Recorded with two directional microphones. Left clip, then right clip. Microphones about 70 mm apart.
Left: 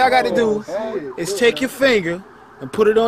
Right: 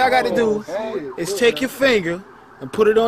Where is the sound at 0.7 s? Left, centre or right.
Right.